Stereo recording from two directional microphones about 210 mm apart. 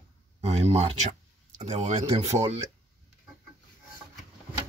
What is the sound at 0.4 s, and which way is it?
Speech, 30° right (ahead or behind).